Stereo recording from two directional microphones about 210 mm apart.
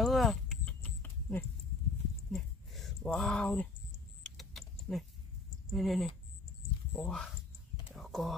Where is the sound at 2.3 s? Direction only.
Centre (ahead or behind).